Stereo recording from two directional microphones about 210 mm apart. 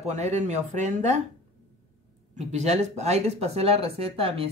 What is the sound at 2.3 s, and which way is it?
A woman's voice, 35° right (ahead or behind).